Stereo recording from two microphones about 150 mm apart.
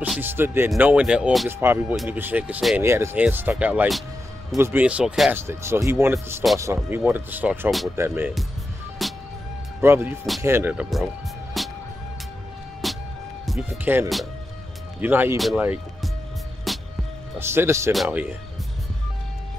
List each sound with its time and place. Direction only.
0.0 s speech: 10° right (ahead or behind)
1.5 s speech: 15° right (ahead or behind)
5.3 s speech: 15° right (ahead or behind)
9.0 s music: centre (ahead or behind)
9.8 s speech: 15° right (ahead or behind)
11.6 s music: centre (ahead or behind)
12.8 s music: centre (ahead or behind)
13.9 s speech: 15° right (ahead or behind)
15.3 s speech: centre (ahead or behind)
16.7 s music: centre (ahead or behind)
17.4 s speech: 15° right (ahead or behind)
17.9 s speech: centre (ahead or behind)